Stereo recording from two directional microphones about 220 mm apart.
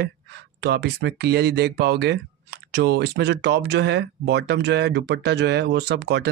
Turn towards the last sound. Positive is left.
turn(degrees=-50)  # may be behind; listen again after turning